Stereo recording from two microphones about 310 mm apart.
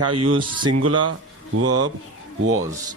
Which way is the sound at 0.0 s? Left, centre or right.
Right.